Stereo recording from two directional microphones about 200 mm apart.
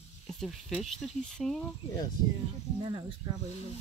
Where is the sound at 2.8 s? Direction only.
25° right (ahead or behind).